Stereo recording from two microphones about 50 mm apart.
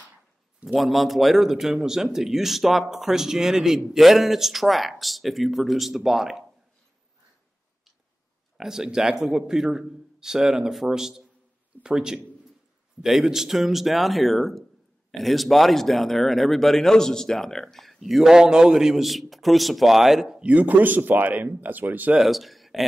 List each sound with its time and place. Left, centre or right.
0.7 s a man's voice: centre
8.5 s a man's voice: centre
20.3 s speech: right
22.1 s speech: centre